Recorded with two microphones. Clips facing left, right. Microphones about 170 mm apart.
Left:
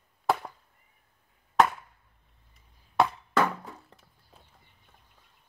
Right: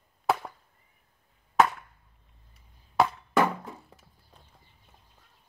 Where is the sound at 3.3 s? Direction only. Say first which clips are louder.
Right 2 dB; 15° right (ahead or behind).